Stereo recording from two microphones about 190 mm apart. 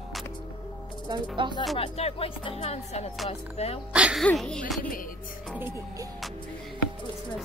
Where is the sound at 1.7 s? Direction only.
30° left (ahead or behind).